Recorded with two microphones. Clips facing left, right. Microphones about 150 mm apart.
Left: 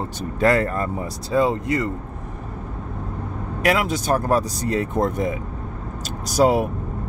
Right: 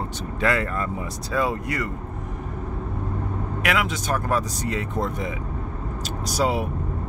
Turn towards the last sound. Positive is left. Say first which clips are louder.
# left 6 dB
turn(degrees=45)  # may be behind; listen again after turning